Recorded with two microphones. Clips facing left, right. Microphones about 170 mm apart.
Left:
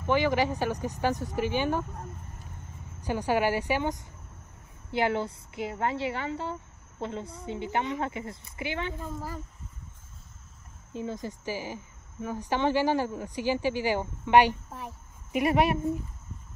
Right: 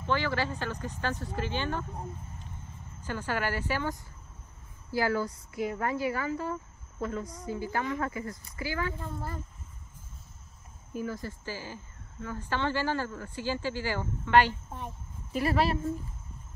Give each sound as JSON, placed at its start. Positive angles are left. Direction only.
{"t": 0.0, "sound": "speech", "side_deg": 15}
{"t": 3.0, "sound": "a woman's voice", "side_deg": 15}
{"t": 9.0, "sound": "speech", "side_deg": 10}
{"t": 10.9, "sound": "speech", "side_deg": 25}